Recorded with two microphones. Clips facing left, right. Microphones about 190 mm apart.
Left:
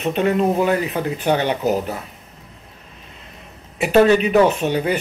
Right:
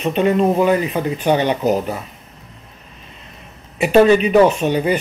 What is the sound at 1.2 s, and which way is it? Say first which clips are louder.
Speech: right 3 dB; 15° right (ahead or behind).